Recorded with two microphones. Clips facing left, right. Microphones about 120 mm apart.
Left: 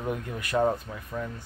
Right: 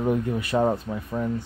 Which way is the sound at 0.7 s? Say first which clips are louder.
Right 6 dB; 35° right (ahead or behind).